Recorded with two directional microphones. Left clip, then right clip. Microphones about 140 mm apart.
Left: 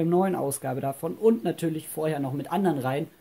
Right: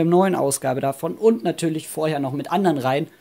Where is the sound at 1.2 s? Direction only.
30° right (ahead or behind).